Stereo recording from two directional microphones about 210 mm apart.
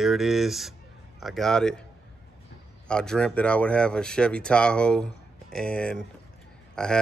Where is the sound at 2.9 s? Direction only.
5° left (ahead or behind).